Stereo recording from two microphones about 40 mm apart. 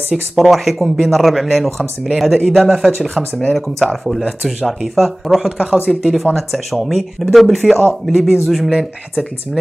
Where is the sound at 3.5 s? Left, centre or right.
Centre.